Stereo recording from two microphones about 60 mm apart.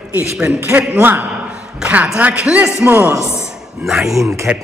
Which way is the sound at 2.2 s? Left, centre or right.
Right.